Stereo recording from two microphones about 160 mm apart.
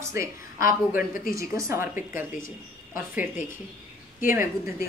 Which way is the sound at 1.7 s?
15° right (ahead or behind).